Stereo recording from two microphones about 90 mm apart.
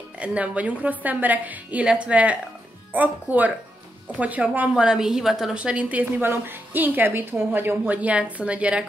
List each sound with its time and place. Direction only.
0.2 s a woman's voice: 15° right (ahead or behind)